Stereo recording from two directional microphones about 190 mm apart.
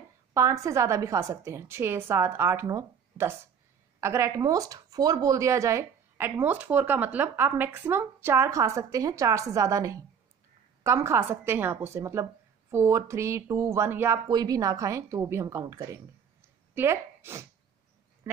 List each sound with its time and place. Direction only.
0.3 s speech: 15° right (ahead or behind)